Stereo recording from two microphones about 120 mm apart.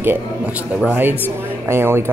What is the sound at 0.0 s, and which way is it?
Speech, 15° right (ahead or behind).